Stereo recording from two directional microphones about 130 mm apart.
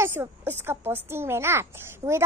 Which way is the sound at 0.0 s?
15° right (ahead or behind).